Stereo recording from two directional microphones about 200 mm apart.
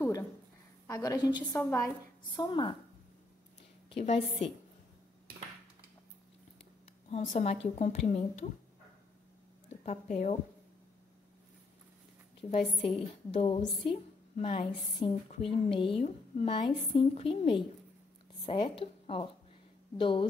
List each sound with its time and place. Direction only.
0.8 s a woman's voice: 15° left (ahead or behind)
2.3 s a woman's voice: 25° left (ahead or behind)
3.9 s speech: 30° left (ahead or behind)
7.1 s speech: 35° left (ahead or behind)
9.8 s speech: 40° left (ahead or behind)
12.4 s a woman's voice: 30° left (ahead or behind)